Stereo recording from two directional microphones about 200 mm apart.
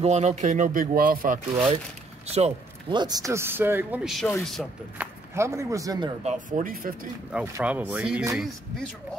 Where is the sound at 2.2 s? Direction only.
30° right (ahead or behind); by 5.1 s centre (ahead or behind).